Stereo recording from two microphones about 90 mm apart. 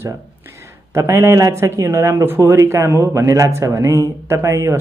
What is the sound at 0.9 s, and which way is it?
A man's voice, 30° right (ahead or behind).